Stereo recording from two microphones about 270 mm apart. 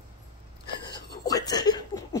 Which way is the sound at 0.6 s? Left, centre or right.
Centre.